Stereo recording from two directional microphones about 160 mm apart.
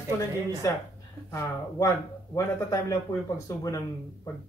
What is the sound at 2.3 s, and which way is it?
Speech, 20° left (ahead or behind).